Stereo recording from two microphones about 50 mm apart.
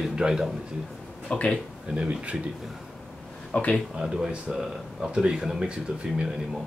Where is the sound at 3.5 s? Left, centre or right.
Left.